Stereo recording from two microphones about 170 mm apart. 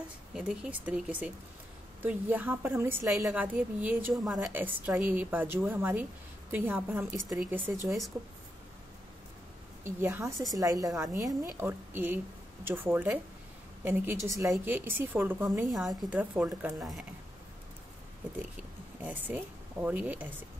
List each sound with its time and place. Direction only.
0.3 s a woman's voice: 5° right (ahead or behind)
9.8 s a woman's voice: 15° right (ahead or behind)
15.7 s a woman's voice: centre (ahead or behind)
16.2 s a woman's voice: 10° right (ahead or behind)
19.0 s a woman's voice: 10° right (ahead or behind)